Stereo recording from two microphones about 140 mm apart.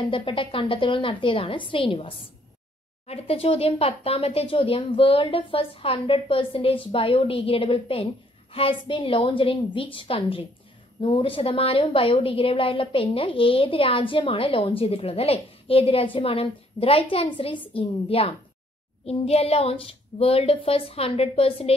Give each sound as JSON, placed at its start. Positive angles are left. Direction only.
{"t": 0.0, "sound": "a woman's voice", "side_deg": 40}